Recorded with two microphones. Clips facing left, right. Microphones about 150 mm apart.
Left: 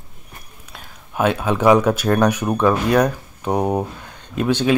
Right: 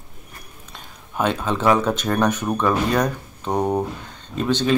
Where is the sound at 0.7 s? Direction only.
5° left (ahead or behind).